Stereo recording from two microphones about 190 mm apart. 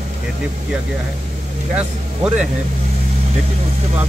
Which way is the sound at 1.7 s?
5° right (ahead or behind).